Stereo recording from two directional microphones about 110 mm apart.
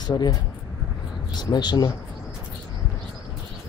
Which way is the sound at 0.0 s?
40° left (ahead or behind).